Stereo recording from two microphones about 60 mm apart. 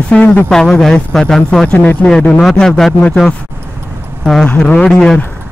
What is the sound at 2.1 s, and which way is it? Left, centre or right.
Speech, centre.